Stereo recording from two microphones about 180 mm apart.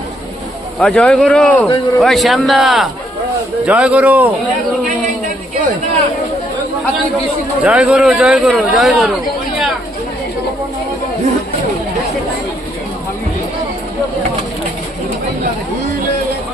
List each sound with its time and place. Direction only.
0.7 s a man's voice: 5° left (ahead or behind)
7.6 s a man's voice: 5° right (ahead or behind)